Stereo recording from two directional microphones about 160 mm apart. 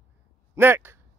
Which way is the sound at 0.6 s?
15° right (ahead or behind).